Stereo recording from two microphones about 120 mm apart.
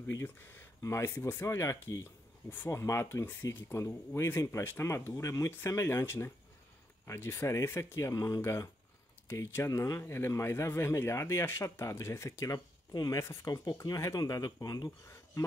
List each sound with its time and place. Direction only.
0.0 s speech: 20° left (ahead or behind)